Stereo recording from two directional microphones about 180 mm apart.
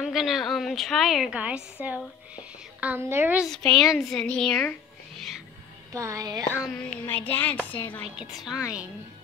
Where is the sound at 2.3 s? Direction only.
10° right (ahead or behind).